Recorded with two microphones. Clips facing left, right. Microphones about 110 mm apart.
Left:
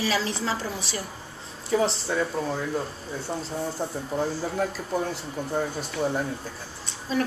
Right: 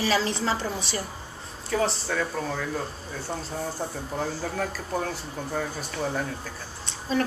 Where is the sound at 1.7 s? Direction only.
20° left (ahead or behind).